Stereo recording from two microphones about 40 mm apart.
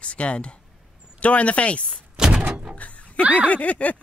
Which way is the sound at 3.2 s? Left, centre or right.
Right.